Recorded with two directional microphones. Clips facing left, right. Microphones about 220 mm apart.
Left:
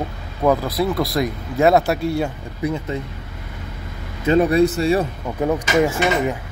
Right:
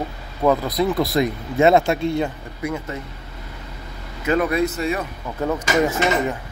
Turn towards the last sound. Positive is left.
turn(degrees=10)  # may be behind; listen again after turning